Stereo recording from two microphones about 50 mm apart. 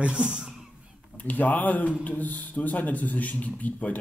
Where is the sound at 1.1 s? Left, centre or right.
Left.